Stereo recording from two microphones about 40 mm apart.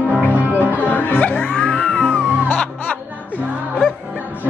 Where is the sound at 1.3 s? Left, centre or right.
Left.